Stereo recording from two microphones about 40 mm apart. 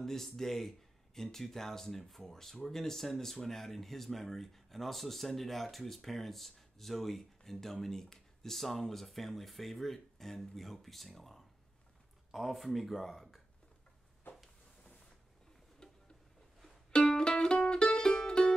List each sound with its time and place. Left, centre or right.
0.0 s speech: centre
15.8 s a sound: left
17.2 s music: left